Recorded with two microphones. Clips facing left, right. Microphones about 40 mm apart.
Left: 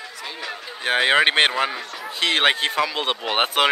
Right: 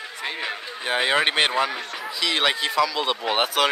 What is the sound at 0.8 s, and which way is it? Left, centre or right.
Speech, left.